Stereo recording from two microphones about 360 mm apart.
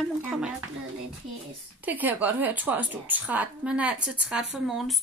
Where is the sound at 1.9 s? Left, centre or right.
Centre.